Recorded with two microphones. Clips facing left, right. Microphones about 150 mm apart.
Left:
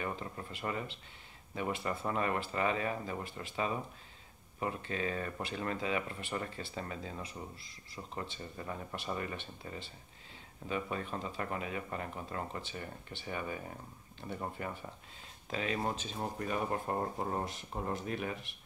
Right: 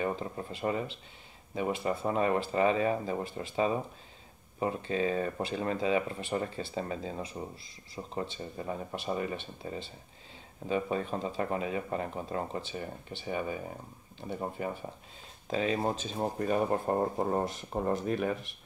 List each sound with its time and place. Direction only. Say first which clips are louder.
0.0 s speech: right 6 dB; 25° right (ahead or behind); by 18.5 s 45° right (ahead or behind)